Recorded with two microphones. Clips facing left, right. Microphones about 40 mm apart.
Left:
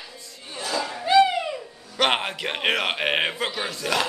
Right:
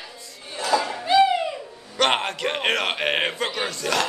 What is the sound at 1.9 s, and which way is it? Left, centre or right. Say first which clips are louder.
Speech: right 1 dB; centre.